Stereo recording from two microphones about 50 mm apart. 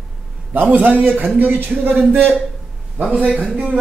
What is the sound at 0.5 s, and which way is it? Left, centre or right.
Speech, right.